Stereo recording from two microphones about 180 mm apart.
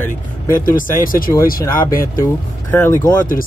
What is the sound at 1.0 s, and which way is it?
Speech, 50° left (ahead or behind).